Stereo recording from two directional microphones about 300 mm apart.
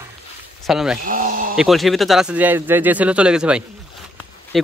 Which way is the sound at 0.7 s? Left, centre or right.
Centre.